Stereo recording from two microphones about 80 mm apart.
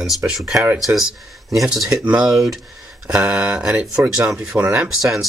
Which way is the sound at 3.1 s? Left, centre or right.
Right.